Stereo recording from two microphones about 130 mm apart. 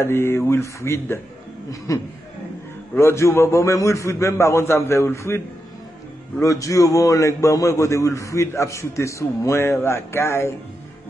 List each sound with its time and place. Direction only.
0.0 s a man's voice: 20° left (ahead or behind)
6.4 s a man's voice: 25° left (ahead or behind)